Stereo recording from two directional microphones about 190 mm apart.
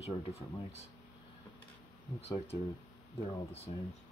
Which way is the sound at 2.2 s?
35° left (ahead or behind).